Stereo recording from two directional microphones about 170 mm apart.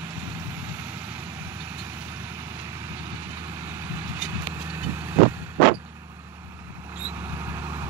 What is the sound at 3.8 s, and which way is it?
Vehicle, 15° right (ahead or behind).